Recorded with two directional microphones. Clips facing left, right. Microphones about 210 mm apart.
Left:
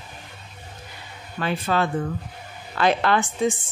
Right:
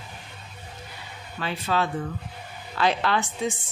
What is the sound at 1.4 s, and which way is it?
Speech, 50° left (ahead or behind).